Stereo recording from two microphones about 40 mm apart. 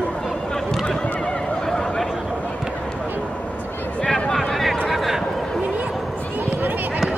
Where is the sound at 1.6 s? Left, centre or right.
Centre.